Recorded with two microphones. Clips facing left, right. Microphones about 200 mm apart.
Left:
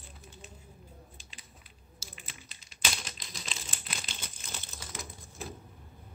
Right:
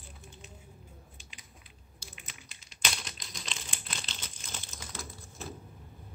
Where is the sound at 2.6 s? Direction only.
Centre (ahead or behind).